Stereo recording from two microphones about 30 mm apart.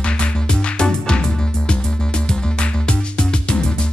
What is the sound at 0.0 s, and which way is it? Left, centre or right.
Music, left.